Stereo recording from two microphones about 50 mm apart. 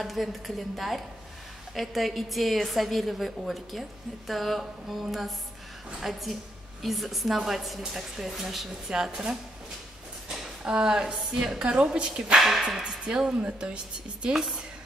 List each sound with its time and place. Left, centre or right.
0.0 s a woman's voice: centre
12.4 s a woman's voice: centre
12.6 s speech: centre
14.3 s speech: centre